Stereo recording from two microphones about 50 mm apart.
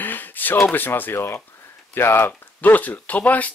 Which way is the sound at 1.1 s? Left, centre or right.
Left.